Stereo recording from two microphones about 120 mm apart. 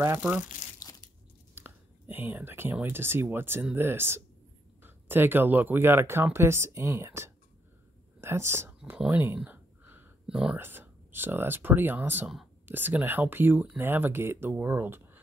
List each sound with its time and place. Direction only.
0.0 s speech: 20° right (ahead or behind)
0.7 s crunch: 30° left (ahead or behind)
1.5 s speech: 15° right (ahead or behind)
9.1 s a sound: 15° right (ahead or behind)
10.6 s speech: 15° right (ahead or behind)